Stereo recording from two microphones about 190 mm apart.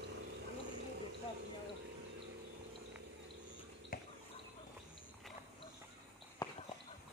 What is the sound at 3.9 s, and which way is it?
Drip, 50° left (ahead or behind).